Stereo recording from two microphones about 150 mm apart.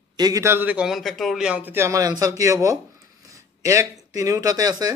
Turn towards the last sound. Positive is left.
turn(degrees=-25)  # may be behind; listen again after turning